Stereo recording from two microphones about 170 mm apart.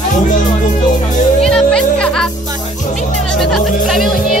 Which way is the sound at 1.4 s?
5° left (ahead or behind).